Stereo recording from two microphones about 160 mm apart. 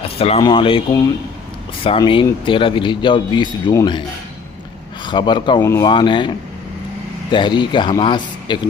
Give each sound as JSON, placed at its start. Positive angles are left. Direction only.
{"t": 0.4, "sound": "speech", "side_deg": 35}
{"t": 5.0, "sound": "speech", "side_deg": 30}
{"t": 5.6, "sound": "speech", "side_deg": 15}
{"t": 5.9, "sound": "speech", "side_deg": 30}